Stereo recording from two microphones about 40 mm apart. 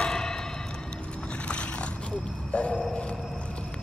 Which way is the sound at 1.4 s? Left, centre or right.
Left.